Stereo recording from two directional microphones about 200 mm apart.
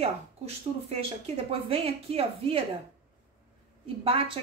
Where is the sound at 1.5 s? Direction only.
30° right (ahead or behind).